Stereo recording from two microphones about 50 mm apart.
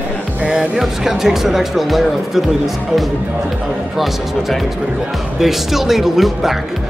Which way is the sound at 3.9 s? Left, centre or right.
Centre.